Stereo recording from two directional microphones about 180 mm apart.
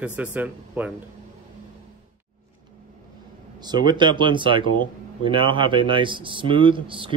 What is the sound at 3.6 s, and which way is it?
A man's voice, 25° right (ahead or behind).